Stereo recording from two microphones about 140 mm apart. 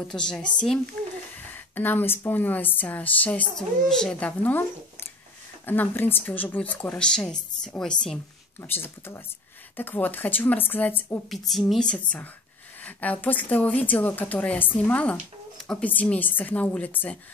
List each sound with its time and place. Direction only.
0.1 s a woman's voice: 5° left (ahead or behind)
11.2 s a woman's voice: centre (ahead or behind)